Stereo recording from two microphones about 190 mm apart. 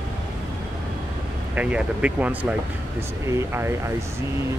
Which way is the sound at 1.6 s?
5° right (ahead or behind).